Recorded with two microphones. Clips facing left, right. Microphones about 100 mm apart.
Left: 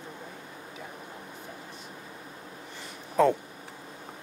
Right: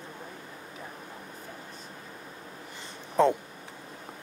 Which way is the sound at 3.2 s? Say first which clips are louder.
Even; 30° right (ahead or behind).